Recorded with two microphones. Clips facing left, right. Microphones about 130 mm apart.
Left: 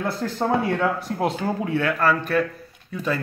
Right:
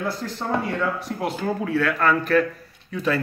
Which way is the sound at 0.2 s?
45° left (ahead or behind).